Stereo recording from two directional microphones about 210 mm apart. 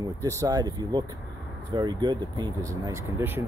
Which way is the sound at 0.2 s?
15° right (ahead or behind).